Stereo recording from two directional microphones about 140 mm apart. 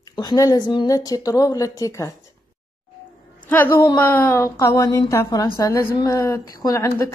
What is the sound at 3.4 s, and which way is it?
A woman's voice, 15° left (ahead or behind).